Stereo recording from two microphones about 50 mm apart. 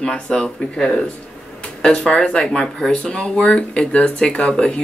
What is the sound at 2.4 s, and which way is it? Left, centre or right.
Speech, centre.